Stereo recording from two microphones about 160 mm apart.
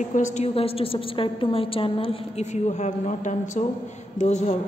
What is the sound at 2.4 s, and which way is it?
A woman's voice, 45° left (ahead or behind).